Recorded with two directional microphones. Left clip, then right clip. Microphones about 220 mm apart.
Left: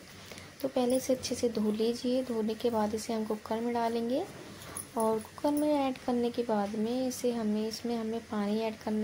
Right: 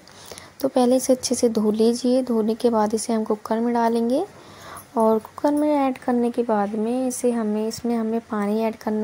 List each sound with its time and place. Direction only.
0.6 s speech: 35° right (ahead or behind)